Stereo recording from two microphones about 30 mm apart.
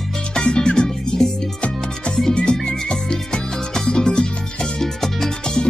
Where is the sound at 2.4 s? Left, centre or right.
Left.